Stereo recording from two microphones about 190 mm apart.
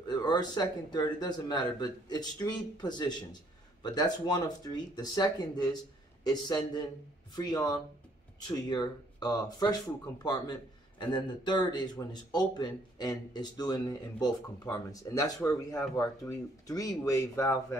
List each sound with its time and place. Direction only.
0.1 s speech: 20° left (ahead or behind)